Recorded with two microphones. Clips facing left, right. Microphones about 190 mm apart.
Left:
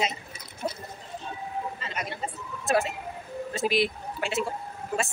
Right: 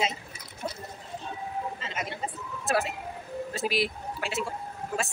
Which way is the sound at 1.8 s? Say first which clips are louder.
Even; 20° right (ahead or behind).